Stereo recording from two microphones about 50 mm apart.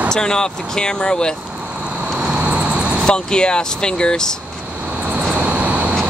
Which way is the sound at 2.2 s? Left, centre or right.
Right.